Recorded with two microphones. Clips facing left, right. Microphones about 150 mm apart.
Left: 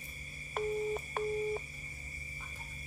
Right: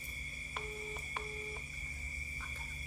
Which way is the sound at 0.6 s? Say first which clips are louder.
Left 12 dB; 50° left (ahead or behind).